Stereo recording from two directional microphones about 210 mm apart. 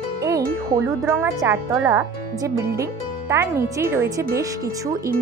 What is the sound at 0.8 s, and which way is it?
Speech, 15° right (ahead or behind).